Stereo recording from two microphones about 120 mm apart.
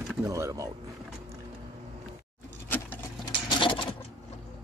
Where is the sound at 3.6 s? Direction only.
45° left (ahead or behind).